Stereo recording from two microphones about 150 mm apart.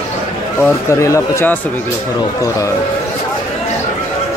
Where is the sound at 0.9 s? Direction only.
20° left (ahead or behind).